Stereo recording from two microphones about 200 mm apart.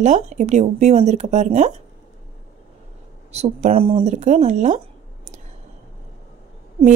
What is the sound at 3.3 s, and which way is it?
Speech, 35° right (ahead or behind).